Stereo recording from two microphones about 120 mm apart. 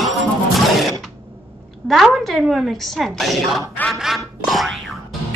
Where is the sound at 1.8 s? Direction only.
Centre (ahead or behind).